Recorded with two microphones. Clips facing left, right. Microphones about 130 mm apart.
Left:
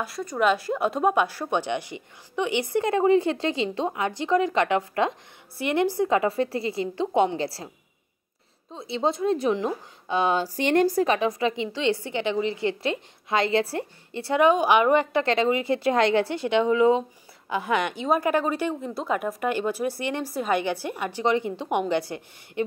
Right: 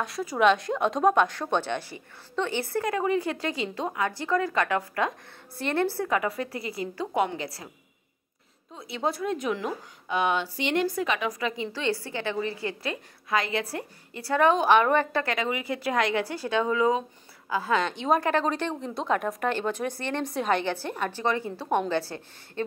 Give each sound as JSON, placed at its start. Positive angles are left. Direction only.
{"t": 0.0, "sound": "a woman's voice", "side_deg": 0}
{"t": 8.7, "sound": "a woman's voice", "side_deg": 25}
{"t": 15.2, "sound": "a woman's voice", "side_deg": 30}
{"t": 17.9, "sound": "speech", "side_deg": 5}